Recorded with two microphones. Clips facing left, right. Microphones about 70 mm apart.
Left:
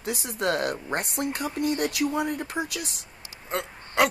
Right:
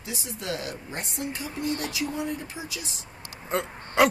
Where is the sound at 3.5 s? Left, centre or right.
Centre.